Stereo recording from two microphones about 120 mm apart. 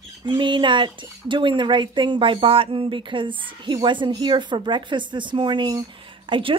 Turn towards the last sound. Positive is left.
turn(degrees=-45)  # may be behind; listen again after turning